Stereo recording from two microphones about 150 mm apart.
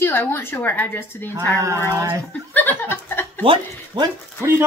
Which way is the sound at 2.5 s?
10° left (ahead or behind).